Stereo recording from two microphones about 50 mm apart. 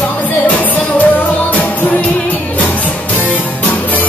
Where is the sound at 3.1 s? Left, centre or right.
Left.